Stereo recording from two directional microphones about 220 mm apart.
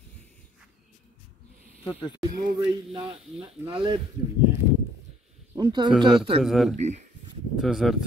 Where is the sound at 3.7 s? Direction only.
20° right (ahead or behind).